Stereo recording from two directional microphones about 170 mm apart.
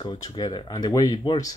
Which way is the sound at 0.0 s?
25° left (ahead or behind).